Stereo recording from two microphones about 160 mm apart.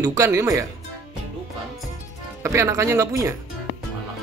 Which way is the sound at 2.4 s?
20° right (ahead or behind).